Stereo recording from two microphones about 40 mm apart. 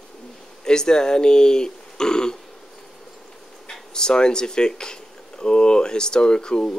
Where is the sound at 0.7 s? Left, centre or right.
Centre.